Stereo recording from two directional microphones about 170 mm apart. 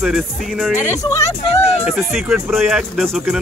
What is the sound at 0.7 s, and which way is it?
Speech, 20° left (ahead or behind).